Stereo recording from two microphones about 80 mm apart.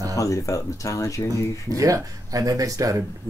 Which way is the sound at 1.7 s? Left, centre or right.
Right.